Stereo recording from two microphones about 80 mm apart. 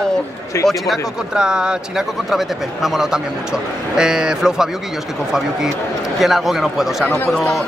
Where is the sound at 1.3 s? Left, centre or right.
Centre.